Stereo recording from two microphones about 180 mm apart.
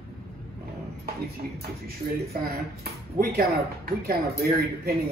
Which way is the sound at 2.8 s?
60° right (ahead or behind).